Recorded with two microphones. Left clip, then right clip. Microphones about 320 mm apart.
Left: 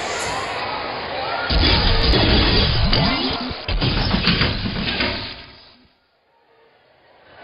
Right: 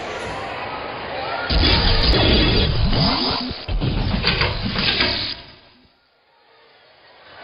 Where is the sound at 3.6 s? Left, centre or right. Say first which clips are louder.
Left 5 dB; left.